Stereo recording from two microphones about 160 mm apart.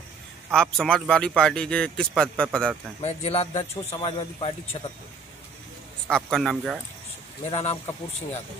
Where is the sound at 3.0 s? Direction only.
40° left (ahead or behind).